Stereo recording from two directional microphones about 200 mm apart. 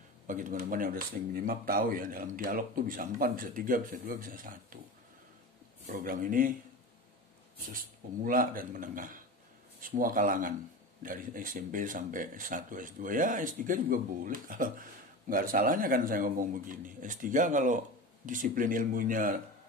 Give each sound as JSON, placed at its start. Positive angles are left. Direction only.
{"t": 0.3, "sound": "speech", "side_deg": -40}
{"t": 5.9, "sound": "speech", "side_deg": -45}
{"t": 7.5, "sound": "speech", "side_deg": -45}